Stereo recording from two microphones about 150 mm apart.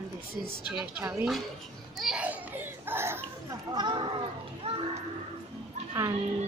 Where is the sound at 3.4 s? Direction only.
30° right (ahead or behind).